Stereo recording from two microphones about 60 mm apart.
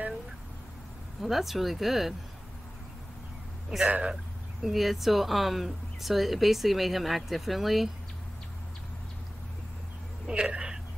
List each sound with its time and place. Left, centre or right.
1.2 s speech: centre
3.8 s speech: centre
4.6 s speech: centre
10.2 s a sound: centre